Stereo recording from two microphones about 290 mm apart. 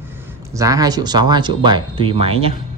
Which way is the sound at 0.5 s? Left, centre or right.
Centre.